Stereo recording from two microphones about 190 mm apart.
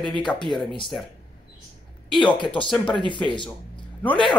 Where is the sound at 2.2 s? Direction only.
25° left (ahead or behind).